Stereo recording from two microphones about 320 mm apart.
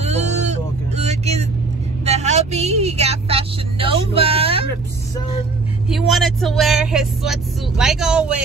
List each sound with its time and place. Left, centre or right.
0.0 s vehicle: right
5.9 s speech: centre